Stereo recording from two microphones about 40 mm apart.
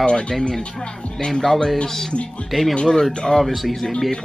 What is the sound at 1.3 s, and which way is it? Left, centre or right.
Speech, centre.